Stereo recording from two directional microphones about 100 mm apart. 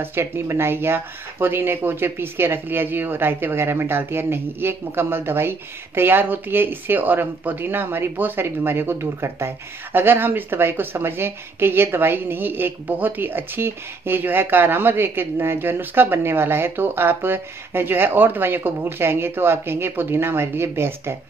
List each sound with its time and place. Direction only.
0.0 s speech: 25° right (ahead or behind)